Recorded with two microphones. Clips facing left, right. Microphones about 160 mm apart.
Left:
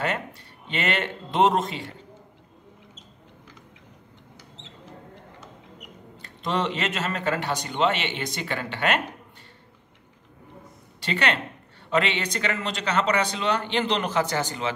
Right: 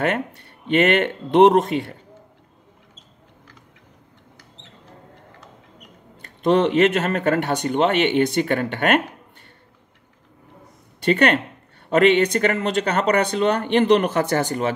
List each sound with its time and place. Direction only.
0.7 s speech: 55° right (ahead or behind)
6.4 s speech: 55° right (ahead or behind)
11.1 s speech: 50° right (ahead or behind)